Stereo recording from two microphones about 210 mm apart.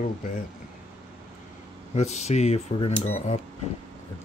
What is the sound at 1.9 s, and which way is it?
Speech, 30° left (ahead or behind).